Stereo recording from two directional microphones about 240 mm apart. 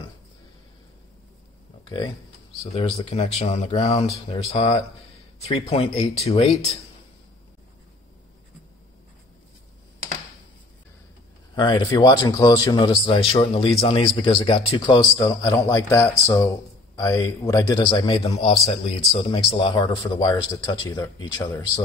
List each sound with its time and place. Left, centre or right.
1.9 s speech: centre
11.5 s speech: centre